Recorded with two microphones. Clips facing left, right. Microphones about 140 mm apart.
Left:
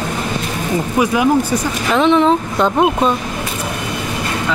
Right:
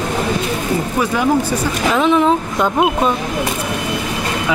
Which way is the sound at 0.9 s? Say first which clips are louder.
Left 3 dB; 10° left (ahead or behind).